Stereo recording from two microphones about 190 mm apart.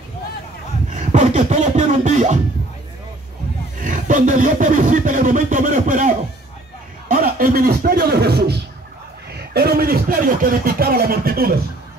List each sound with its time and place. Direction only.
0.9 s beatboxing: 40° right (ahead or behind)
3.8 s speech: 45° right (ahead or behind)